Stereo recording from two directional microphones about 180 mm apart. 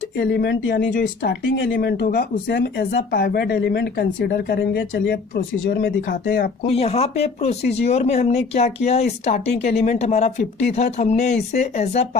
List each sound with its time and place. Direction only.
0.2 s speech: 65° left (ahead or behind)
5.7 s speech: 55° left (ahead or behind)
6.6 s speech: 35° left (ahead or behind)